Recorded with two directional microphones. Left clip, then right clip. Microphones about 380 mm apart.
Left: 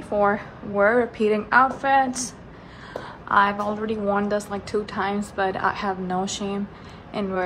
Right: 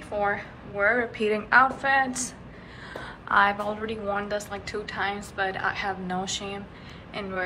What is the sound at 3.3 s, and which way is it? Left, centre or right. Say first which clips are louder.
A woman's voice: left 2 dB; centre.